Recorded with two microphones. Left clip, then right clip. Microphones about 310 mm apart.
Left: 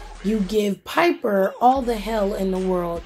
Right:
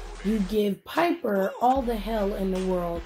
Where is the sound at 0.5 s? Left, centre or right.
Left.